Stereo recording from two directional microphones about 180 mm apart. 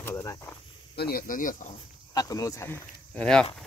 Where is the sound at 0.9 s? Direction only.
55° left (ahead or behind).